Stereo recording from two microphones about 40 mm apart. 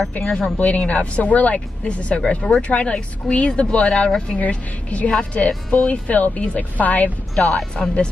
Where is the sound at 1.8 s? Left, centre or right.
Left.